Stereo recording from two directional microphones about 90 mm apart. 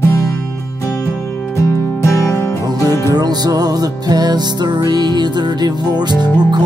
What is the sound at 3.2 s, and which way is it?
Music, 50° right (ahead or behind).